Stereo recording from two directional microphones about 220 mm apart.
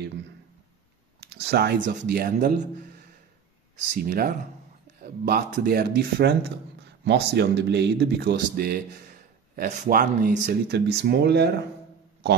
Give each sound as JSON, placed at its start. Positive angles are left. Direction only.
{"t": 1.2, "sound": "speech", "side_deg": -50}
{"t": 3.9, "sound": "speech", "side_deg": -45}